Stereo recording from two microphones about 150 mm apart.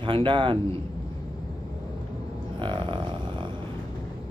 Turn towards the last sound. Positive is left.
turn(degrees=-30)  # may be behind; listen again after turning